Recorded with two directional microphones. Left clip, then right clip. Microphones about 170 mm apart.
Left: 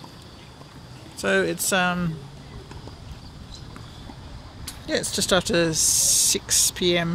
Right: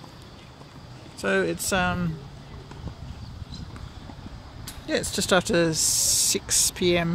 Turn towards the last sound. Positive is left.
turn(degrees=-15)  # may be behind; listen again after turning